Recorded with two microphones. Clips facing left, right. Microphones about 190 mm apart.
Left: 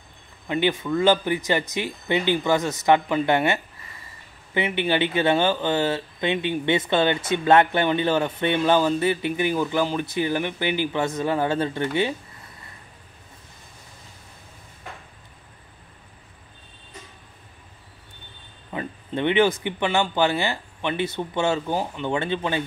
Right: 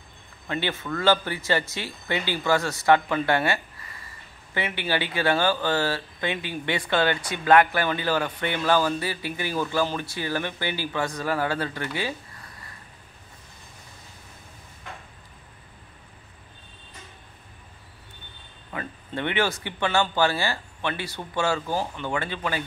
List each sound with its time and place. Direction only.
0.5 s speech: 15° left (ahead or behind)
18.7 s speech: 20° left (ahead or behind)